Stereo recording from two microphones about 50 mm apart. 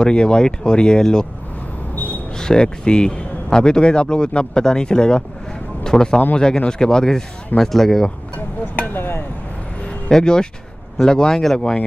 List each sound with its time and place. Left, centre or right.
0.0 s speech: centre
2.3 s speech: centre
8.7 s a sound: left
9.8 s vehicle: centre
11.0 s speech: centre